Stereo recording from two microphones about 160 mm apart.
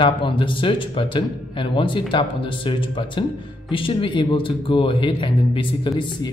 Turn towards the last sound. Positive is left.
turn(degrees=25)  # may be behind; listen again after turning